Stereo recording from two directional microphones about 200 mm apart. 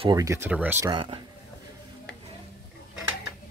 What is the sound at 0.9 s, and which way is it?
Speech, 25° right (ahead or behind).